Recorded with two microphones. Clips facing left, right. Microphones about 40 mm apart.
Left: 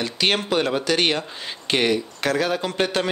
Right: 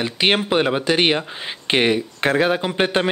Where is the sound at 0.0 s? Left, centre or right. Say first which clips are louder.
Right 3 dB; right.